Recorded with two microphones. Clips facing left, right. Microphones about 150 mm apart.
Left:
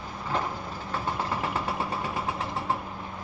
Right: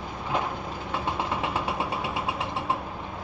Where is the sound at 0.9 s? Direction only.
20° right (ahead or behind).